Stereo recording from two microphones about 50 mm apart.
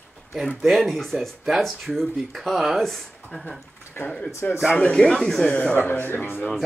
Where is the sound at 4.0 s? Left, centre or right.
Left.